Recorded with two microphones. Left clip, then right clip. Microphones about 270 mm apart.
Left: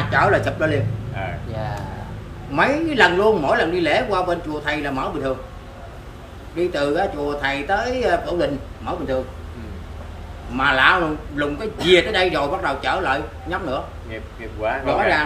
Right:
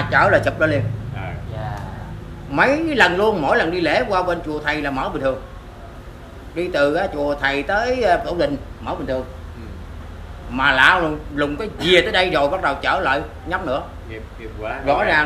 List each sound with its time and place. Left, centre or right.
0.1 s a man's voice: centre
2.5 s a man's voice: centre
6.5 s a man's voice: centre
10.6 s a man's voice: centre
14.1 s speech: centre